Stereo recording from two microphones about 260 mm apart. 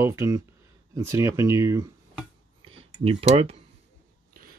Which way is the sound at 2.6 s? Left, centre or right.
Right.